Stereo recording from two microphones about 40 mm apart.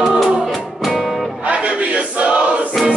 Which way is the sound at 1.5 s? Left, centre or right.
Right.